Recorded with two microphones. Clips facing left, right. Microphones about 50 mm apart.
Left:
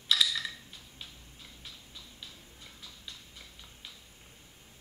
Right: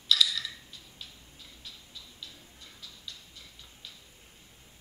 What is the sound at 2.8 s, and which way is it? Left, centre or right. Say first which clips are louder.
Music: right 2 dB; left.